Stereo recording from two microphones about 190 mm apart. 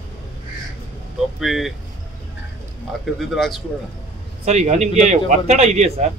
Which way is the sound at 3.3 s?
Centre (ahead or behind).